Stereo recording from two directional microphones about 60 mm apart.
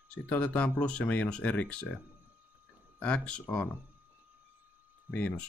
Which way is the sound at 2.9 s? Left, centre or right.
Centre.